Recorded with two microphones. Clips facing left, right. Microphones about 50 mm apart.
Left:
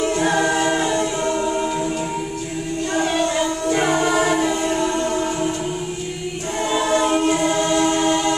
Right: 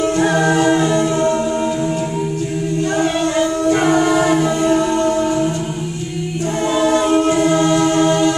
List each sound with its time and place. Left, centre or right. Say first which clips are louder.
0.6 s music: right 5 dB; left
3.9 s choir: right 4 dB; right
4.7 s music: right 5 dB; right
6.8 s choir: right 4 dB; left
7.5 s music: right 4 dB; right